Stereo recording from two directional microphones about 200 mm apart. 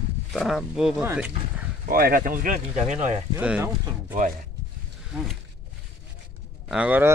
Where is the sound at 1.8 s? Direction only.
45° right (ahead or behind).